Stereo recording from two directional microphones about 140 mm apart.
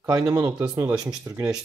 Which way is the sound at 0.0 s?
25° right (ahead or behind).